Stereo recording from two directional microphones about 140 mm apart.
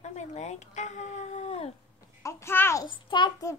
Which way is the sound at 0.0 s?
55° left (ahead or behind).